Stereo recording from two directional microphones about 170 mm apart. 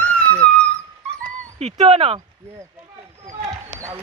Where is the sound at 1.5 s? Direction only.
40° right (ahead or behind).